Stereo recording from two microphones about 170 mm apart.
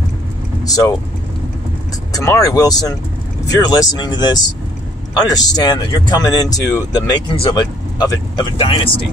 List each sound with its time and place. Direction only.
0.7 s speech: 20° left (ahead or behind)
2.1 s speech: 20° left (ahead or behind)